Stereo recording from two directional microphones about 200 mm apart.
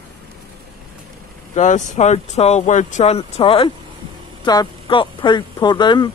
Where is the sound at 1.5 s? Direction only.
35° left (ahead or behind).